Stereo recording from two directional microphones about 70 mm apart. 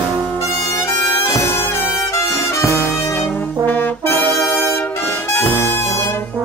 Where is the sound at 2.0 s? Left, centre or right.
Left.